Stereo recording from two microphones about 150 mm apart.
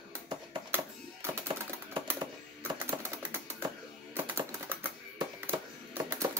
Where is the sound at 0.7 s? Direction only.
15° right (ahead or behind).